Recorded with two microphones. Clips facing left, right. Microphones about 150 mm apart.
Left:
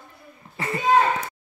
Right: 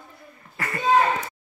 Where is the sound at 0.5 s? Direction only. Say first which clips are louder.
Left 3 dB; 25° left (ahead or behind).